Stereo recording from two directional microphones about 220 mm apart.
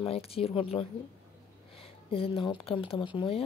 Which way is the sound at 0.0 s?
25° left (ahead or behind).